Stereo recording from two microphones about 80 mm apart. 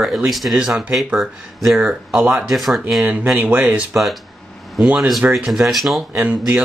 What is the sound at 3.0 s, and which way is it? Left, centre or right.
Speech, right.